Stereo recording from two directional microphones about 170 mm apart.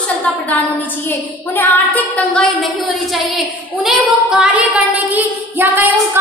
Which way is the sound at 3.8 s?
5° right (ahead or behind).